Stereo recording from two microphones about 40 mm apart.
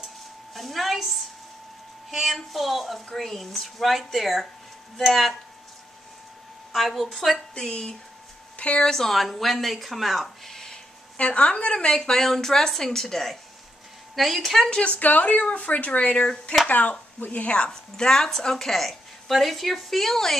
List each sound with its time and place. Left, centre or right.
0.6 s a woman's voice: centre
6.9 s speech: centre
8.5 s a woman's voice: left
8.8 s speech: centre
11.1 s a woman's voice: left; by 14.7 s centre
14.7 s speech: left
15.0 s speech: left
17.6 s a woman's voice: centre